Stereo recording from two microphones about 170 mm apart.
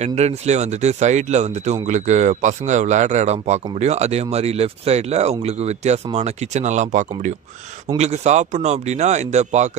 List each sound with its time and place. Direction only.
0.0 s speech: 40° right (ahead or behind)